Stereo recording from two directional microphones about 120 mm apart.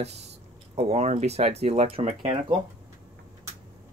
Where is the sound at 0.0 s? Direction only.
65° right (ahead or behind).